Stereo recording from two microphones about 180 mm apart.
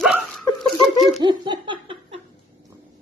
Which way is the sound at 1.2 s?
25° right (ahead or behind).